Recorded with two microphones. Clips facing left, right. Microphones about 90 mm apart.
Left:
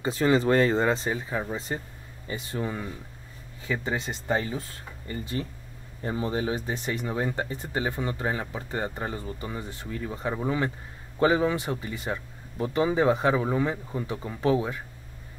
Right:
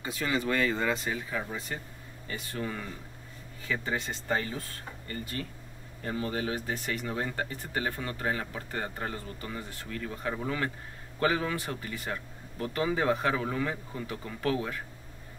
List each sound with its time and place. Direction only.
0.0 s speech: 35° left (ahead or behind)